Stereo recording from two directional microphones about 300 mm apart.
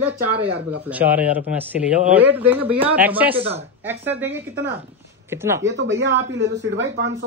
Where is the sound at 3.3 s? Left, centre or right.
Centre.